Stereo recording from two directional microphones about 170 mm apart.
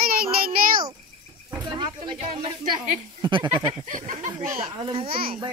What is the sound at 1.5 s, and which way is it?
Speech, 25° right (ahead or behind).